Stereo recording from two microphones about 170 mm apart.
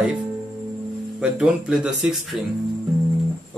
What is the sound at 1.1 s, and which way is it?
Speech, 5° right (ahead or behind).